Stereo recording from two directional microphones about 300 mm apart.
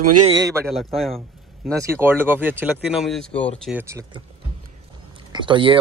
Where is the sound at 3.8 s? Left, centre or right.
Centre.